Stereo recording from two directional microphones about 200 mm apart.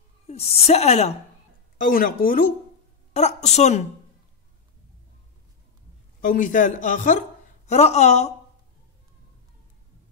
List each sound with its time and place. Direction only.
0.3 s speech: 30° left (ahead or behind)
1.8 s a woman's voice: 45° left (ahead or behind)
6.2 s speech: 40° left (ahead or behind)